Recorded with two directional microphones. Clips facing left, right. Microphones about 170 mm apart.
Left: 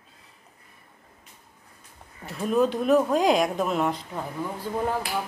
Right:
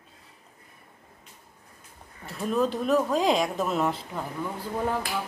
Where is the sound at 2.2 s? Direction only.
Centre (ahead or behind).